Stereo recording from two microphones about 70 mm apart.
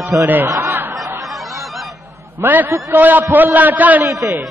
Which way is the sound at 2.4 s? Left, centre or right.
Right.